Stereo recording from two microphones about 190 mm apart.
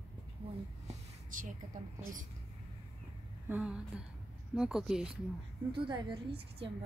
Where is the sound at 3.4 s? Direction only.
5° right (ahead or behind).